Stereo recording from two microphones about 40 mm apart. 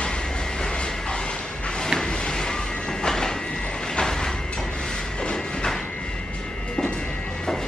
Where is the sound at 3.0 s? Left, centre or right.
Centre.